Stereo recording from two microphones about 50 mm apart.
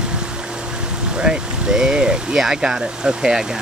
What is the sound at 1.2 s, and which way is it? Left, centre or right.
Speech, centre.